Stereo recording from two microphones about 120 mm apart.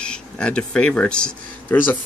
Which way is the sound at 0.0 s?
10° left (ahead or behind).